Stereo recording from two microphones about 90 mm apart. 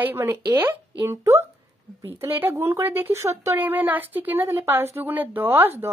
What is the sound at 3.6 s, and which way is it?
A woman's voice, 20° right (ahead or behind).